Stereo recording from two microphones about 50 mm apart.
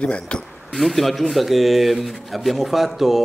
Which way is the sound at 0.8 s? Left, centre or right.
Centre.